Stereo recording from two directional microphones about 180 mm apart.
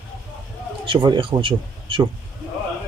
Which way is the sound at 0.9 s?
25° right (ahead or behind).